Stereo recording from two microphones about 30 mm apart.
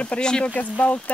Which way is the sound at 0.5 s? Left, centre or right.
Left.